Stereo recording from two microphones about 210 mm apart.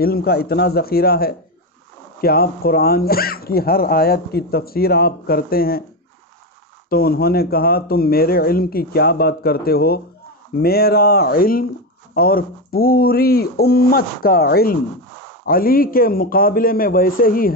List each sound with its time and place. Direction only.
0.0 s speech: 45° left (ahead or behind)
6.9 s speech: 45° left (ahead or behind)